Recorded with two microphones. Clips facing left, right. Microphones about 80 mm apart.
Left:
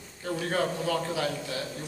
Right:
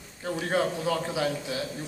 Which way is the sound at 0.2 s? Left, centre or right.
Centre.